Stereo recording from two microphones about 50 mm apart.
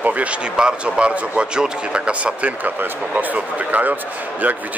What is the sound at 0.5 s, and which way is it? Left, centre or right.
A man's voice, centre.